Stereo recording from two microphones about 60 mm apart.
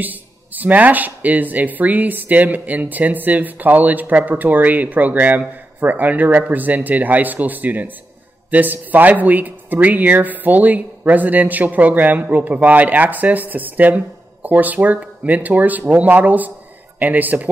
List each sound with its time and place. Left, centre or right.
0.0 s speech: right